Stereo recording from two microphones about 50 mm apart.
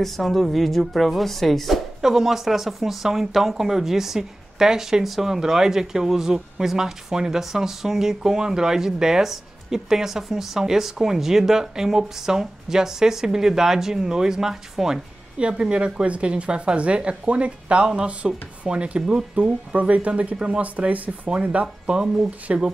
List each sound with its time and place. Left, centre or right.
0.0 s a woman's voice: centre
2.0 s speech: centre
15.3 s speech: right
20.6 s speech: right